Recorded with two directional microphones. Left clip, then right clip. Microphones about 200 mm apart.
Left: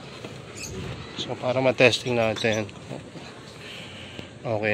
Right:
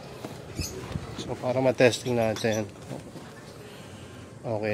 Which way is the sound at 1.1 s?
10° right (ahead or behind).